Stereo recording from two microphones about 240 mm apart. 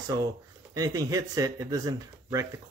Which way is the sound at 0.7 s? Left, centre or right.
Centre.